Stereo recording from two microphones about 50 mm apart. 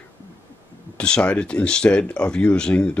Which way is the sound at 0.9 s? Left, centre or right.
Centre.